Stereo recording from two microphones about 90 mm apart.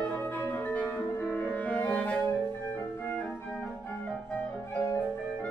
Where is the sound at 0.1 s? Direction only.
20° left (ahead or behind).